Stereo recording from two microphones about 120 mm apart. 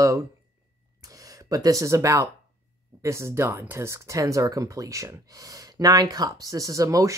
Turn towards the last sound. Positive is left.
turn(degrees=-25)  # may be behind; listen again after turning